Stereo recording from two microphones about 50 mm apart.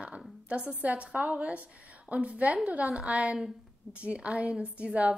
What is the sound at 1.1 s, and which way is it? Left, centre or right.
A woman's voice, right.